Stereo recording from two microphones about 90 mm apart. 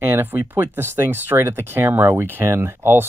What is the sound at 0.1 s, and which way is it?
Speech, 25° right (ahead or behind).